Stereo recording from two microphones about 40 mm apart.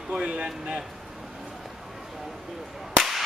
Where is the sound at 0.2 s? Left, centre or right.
Right.